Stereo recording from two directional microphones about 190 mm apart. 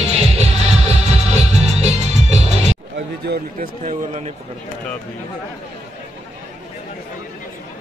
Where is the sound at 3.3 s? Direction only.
45° right (ahead or behind).